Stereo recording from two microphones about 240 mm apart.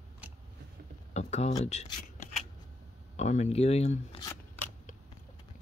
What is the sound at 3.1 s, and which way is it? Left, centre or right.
Speech, left.